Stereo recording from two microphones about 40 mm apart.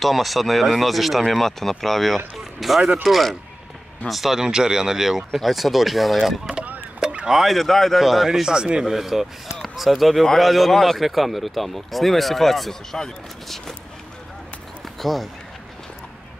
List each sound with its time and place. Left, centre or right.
0.0 s speech: centre
4.4 s speech: centre
7.0 s rowboat: centre
7.4 s speech: centre
8.3 s speech: centre
8.8 s speech: centre
15.0 s speech: centre